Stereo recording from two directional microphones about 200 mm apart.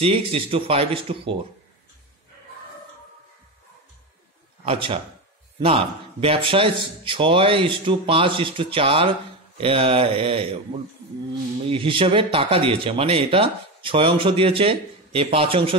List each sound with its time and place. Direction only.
0.0 s speech: 30° right (ahead or behind)
4.6 s speech: 25° right (ahead or behind)
11.7 s speech: 25° right (ahead or behind)